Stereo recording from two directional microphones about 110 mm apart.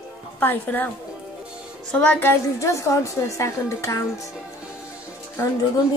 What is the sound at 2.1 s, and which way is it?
A woman's voice, 25° left (ahead or behind).